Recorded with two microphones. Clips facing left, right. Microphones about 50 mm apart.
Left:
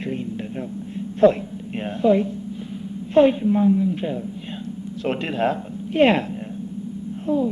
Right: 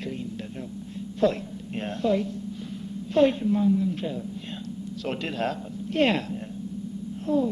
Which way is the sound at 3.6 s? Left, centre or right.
Left.